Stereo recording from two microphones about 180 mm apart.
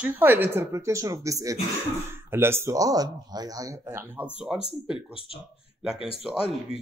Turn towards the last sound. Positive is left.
turn(degrees=-5)  # may be behind; listen again after turning